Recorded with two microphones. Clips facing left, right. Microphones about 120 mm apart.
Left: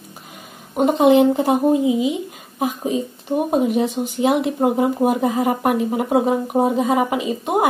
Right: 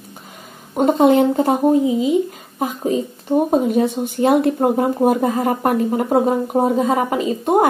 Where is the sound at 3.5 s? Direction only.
10° left (ahead or behind).